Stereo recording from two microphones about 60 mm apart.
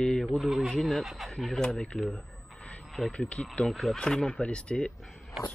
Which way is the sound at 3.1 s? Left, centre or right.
Centre.